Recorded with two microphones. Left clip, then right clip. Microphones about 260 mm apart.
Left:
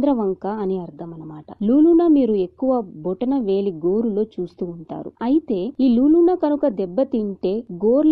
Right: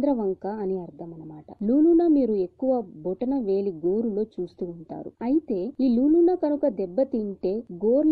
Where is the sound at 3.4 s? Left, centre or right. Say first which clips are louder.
Left 3 dB; left.